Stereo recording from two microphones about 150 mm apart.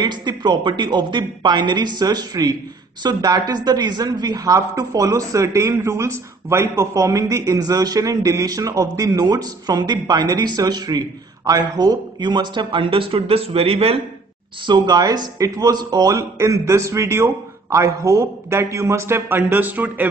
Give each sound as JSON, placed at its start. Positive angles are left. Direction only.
{"t": 0.0, "sound": "a woman's voice", "side_deg": -30}
{"t": 14.7, "sound": "a woman's voice", "side_deg": -30}